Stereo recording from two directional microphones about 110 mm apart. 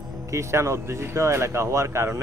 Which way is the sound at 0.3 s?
25° right (ahead or behind).